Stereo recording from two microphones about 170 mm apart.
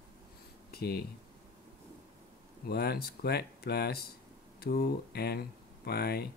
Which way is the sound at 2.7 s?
65° left (ahead or behind).